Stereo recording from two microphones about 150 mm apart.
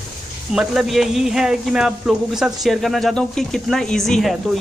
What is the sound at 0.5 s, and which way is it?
Speech, centre (ahead or behind).